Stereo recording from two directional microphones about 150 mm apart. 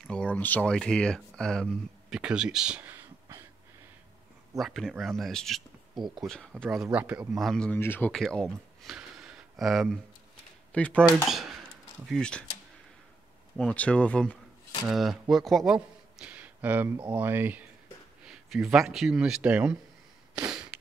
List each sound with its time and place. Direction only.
0.0 s speech: 5° left (ahead or behind); by 3.4 s 15° right (ahead or behind)
4.6 s speech: centre (ahead or behind)
5.9 s speech: 30° right (ahead or behind)
6.2 s speech: 5° left (ahead or behind)
13.6 s speech: 5° left (ahead or behind)